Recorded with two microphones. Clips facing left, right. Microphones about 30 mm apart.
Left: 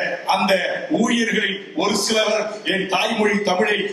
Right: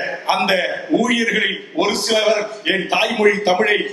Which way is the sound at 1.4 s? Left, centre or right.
Centre.